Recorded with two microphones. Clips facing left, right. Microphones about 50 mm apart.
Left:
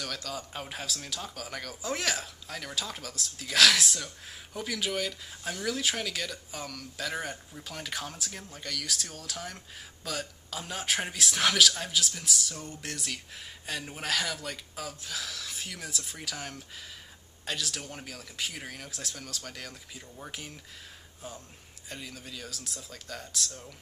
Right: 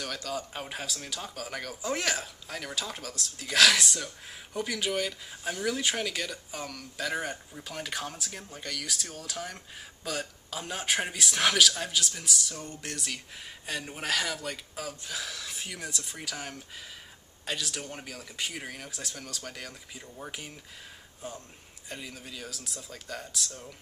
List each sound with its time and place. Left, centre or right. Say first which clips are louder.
0.0 s speech: right 2 dB; centre